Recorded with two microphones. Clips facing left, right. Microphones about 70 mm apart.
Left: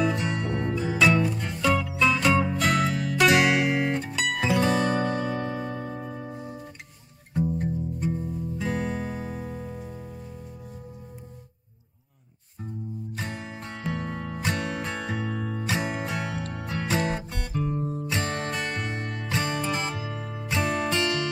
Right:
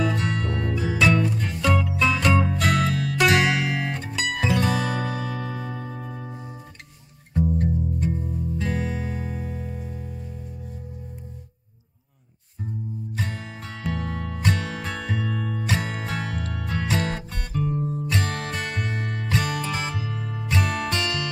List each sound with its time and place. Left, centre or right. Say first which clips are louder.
0.0 s music: right 1 dB; centre
5.3 s music: left 2 dB; centre
7.3 s music: right 3 dB; centre
13.1 s music: right 3 dB; centre
13.9 s music: right 1 dB; centre
15.1 s music: right 2 dB; centre
15.6 s music: left 1 dB; centre
16.5 s music: right 2 dB; centre
16.9 s music: left 2 dB; centre
17.6 s music: right 3 dB; centre